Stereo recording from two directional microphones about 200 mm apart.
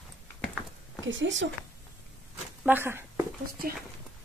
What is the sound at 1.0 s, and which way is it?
Speech, 70° right (ahead or behind).